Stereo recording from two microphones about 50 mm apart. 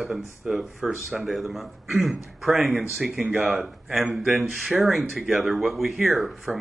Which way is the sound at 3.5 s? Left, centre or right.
Centre.